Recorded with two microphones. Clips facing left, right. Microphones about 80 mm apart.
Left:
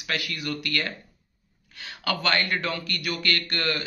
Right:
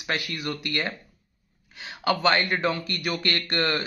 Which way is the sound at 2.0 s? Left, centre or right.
Right.